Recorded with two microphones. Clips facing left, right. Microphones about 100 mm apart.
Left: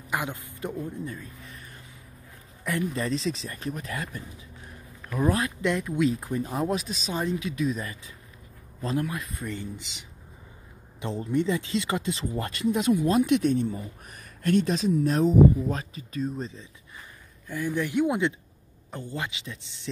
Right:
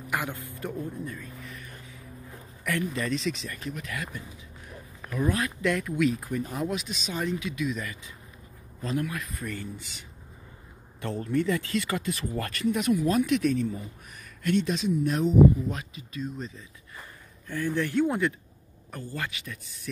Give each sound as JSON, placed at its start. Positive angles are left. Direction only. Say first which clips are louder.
{"t": 0.1, "sound": "speech", "louder": "left 1 dB", "side_deg": 20}
{"t": 1.0, "sound": "speech", "louder": "left 1 dB", "side_deg": 30}
{"t": 2.9, "sound": "speech", "louder": "left 1 dB", "side_deg": 35}
{"t": 14.4, "sound": "speech", "louder": "left 2 dB", "side_deg": 40}
{"t": 17.5, "sound": "speech", "louder": "even", "side_deg": 15}